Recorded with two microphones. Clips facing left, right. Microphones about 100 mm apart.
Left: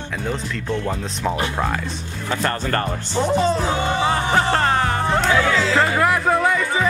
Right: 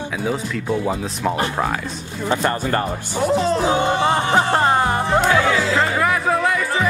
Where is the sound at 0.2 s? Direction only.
5° right (ahead or behind).